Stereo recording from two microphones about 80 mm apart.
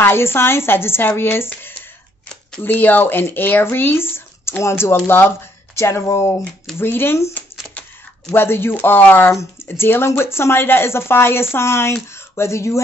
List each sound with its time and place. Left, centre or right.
0.0 s speech: left
2.6 s a woman's voice: left
9.3 s speech: left
9.7 s a woman's voice: left